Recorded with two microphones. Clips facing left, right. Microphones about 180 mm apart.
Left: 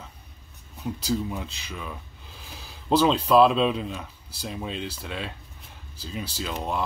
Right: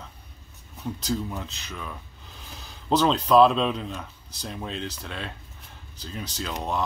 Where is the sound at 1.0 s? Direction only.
5° left (ahead or behind).